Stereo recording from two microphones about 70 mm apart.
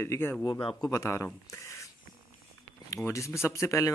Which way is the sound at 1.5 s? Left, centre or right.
Left.